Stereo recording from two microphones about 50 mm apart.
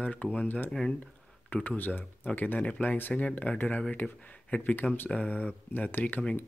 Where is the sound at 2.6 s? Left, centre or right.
Left.